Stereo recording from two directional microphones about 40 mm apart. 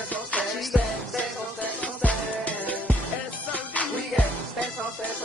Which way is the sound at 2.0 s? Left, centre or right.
Left.